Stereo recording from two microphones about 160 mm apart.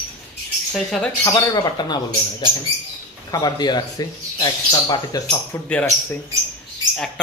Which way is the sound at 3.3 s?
25° left (ahead or behind).